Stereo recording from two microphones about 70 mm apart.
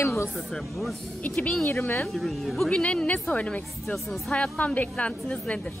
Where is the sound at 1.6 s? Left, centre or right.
Left.